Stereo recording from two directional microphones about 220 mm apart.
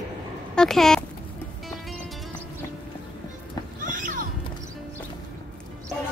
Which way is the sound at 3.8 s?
35° right (ahead or behind).